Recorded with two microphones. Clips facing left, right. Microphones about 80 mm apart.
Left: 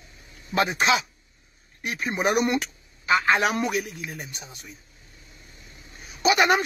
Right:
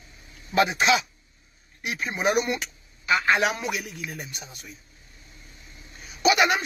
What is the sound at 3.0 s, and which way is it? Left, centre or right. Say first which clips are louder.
A man's voice: left 1 dB; left.